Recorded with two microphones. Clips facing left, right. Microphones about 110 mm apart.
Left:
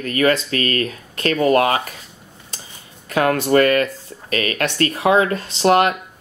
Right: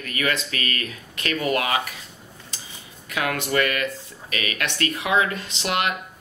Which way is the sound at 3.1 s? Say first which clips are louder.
Left 8 dB; 40° left (ahead or behind).